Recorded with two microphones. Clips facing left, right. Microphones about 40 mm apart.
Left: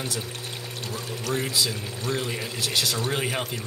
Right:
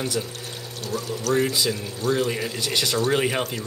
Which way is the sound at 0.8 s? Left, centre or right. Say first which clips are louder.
Right 6 dB; left.